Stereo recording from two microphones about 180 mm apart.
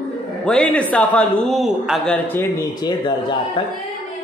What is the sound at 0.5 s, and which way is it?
A man's voice, 5° left (ahead or behind).